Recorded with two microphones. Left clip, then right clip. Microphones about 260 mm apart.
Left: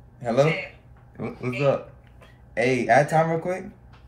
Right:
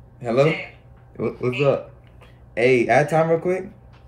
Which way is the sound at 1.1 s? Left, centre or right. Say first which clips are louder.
Right 7 dB; centre.